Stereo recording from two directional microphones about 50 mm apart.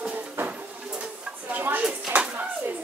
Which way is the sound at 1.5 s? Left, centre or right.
Right.